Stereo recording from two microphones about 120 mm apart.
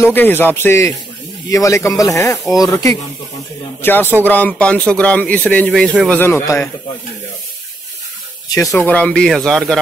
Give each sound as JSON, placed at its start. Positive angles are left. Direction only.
{"t": 0.0, "sound": "speech", "side_deg": 15}
{"t": 3.8, "sound": "speech", "side_deg": 15}
{"t": 5.7, "sound": "speech", "side_deg": 5}
{"t": 6.1, "sound": "speech", "side_deg": 20}
{"t": 8.5, "sound": "speech", "side_deg": 30}
{"t": 8.7, "sound": "speech", "side_deg": 10}